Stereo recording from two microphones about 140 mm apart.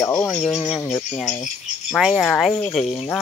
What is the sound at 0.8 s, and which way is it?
Speech, 15° left (ahead or behind).